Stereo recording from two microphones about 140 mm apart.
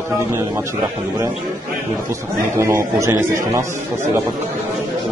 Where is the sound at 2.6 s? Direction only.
20° right (ahead or behind).